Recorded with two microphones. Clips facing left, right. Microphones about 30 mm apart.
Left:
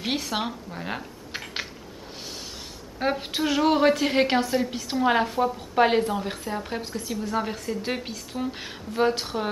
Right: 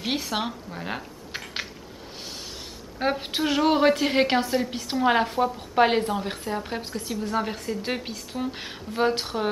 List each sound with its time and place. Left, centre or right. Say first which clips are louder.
0.0 s speech: even; centre
3.0 s a woman's voice: even; centre